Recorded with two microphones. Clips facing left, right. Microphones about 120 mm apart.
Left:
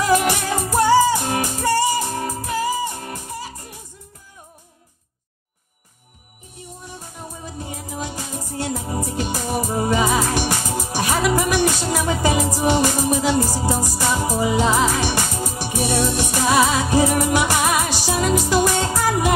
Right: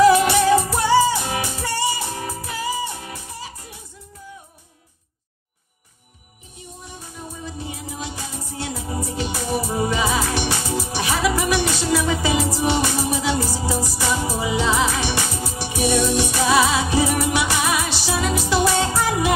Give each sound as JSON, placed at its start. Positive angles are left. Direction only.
{"t": 0.0, "sound": "music", "side_deg": 45}
{"t": 7.4, "sound": "music", "side_deg": 45}